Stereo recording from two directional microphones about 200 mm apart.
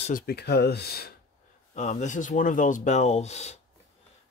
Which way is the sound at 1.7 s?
35° left (ahead or behind).